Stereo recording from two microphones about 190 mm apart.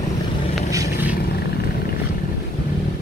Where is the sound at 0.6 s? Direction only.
15° right (ahead or behind).